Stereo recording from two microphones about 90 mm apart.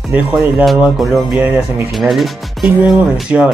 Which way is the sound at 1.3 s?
20° right (ahead or behind).